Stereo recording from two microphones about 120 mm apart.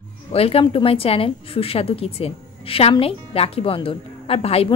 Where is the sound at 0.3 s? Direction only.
55° left (ahead or behind).